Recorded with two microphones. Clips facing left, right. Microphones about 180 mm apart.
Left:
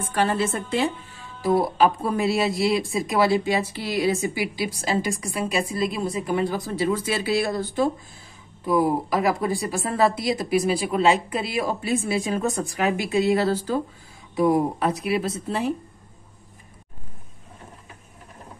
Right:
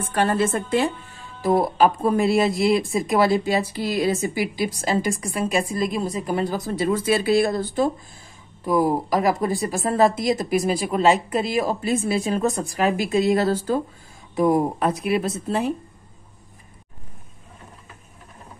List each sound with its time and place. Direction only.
0.1 s speech: 50° right (ahead or behind)